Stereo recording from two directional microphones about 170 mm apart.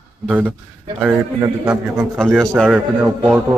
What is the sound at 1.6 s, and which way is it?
Speech, 5° right (ahead or behind).